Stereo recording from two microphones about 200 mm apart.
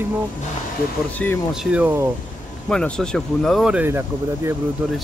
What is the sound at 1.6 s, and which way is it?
Speech, 5° right (ahead or behind).